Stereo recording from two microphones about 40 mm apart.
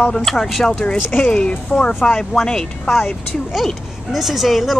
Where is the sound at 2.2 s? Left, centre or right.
Centre.